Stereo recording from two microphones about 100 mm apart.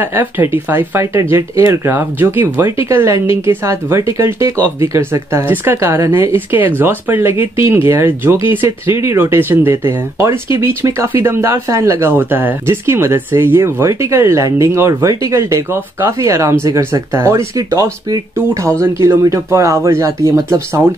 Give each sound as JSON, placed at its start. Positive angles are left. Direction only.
{"t": 0.0, "sound": "speech", "side_deg": -20}
{"t": 5.5, "sound": "speech", "side_deg": -20}